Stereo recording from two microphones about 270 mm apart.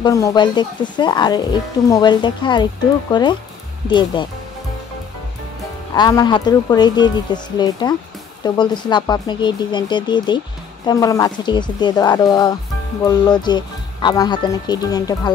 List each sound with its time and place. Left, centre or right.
0.0 s speech: centre
5.9 s speech: centre